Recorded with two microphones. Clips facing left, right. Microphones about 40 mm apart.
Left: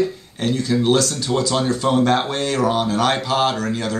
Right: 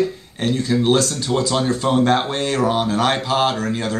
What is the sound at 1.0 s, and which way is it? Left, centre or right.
Speech, right.